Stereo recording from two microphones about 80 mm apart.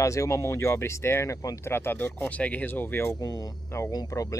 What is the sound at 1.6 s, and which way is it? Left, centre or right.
Speech, left.